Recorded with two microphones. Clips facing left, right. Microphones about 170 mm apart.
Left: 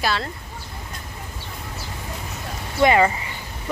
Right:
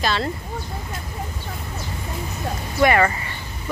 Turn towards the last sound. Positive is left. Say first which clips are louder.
# left 1 dB
turn(degrees=20)  # may be behind; listen again after turning